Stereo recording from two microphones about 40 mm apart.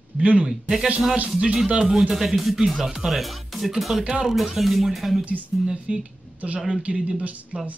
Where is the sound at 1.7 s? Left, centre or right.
Centre.